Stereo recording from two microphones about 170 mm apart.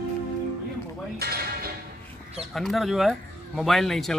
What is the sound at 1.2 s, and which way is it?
Music, 65° right (ahead or behind).